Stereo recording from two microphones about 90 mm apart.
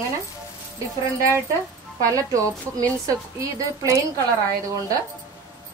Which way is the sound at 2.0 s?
40° right (ahead or behind).